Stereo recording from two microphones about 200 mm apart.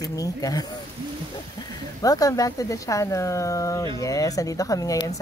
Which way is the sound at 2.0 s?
15° left (ahead or behind).